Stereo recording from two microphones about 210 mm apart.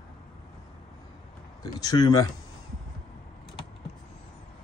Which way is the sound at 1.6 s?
20° left (ahead or behind).